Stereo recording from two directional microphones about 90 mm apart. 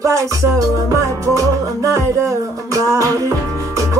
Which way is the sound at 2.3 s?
35° right (ahead or behind).